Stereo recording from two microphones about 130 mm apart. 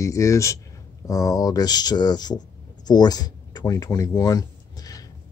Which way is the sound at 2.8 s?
30° left (ahead or behind).